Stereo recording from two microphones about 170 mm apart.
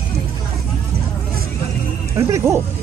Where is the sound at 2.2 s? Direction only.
15° right (ahead or behind).